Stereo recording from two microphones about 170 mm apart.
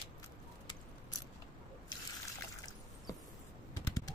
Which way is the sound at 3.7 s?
20° left (ahead or behind).